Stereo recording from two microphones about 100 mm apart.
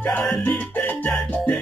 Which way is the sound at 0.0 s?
10° left (ahead or behind).